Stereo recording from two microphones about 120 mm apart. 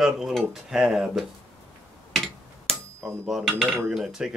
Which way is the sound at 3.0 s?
20° right (ahead or behind).